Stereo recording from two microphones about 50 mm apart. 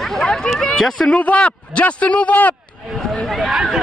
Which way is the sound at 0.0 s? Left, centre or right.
Centre.